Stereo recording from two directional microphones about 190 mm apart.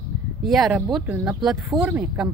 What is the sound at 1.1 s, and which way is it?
Speech, 10° right (ahead or behind).